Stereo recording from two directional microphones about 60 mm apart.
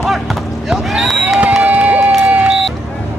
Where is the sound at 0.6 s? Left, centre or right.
Centre.